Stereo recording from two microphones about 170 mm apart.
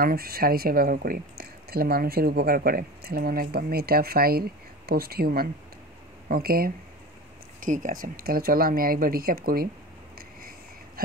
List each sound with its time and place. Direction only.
0.0 s speech: 65° right (ahead or behind)
7.6 s speech: 50° right (ahead or behind)